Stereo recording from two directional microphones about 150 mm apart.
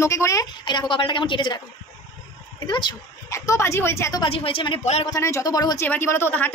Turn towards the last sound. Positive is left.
turn(degrees=15)  # may be behind; listen again after turning